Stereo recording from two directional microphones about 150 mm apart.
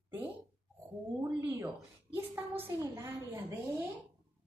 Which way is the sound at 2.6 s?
15° right (ahead or behind).